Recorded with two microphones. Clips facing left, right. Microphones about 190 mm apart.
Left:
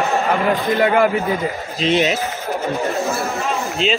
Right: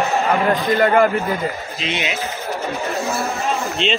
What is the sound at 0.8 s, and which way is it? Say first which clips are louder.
Speech: right 1 dB; 5° left (ahead or behind).